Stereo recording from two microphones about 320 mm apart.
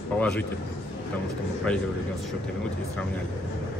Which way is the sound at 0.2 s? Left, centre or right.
Centre.